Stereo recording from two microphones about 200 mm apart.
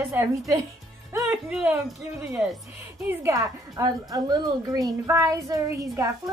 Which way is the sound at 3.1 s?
15° right (ahead or behind).